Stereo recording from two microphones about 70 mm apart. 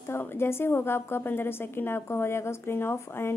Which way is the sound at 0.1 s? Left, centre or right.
Left.